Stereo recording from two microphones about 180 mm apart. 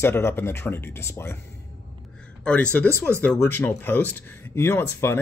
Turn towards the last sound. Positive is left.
turn(degrees=15)  # may be behind; listen again after turning